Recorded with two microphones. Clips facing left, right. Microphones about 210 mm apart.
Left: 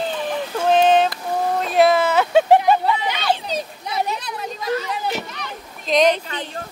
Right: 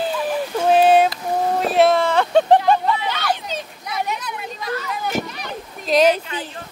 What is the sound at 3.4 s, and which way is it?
Children playing, 30° left (ahead or behind).